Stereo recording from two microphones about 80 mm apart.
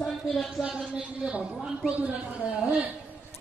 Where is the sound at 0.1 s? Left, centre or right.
Centre.